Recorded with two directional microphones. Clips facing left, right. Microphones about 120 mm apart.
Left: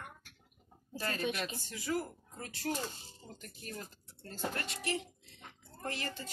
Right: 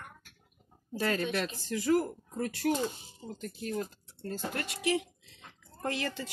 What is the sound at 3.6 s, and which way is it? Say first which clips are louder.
Speech: right 10 dB; 50° right (ahead or behind).